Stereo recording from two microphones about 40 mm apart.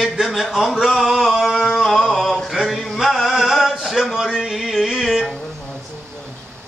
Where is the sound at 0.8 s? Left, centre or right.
Centre.